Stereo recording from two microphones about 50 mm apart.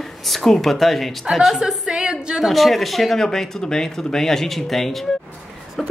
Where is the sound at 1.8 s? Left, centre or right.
Centre.